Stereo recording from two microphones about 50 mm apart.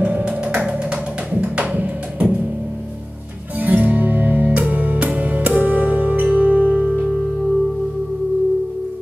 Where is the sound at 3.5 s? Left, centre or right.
Right.